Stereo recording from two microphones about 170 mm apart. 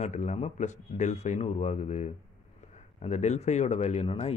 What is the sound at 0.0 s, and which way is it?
Speech, 45° left (ahead or behind).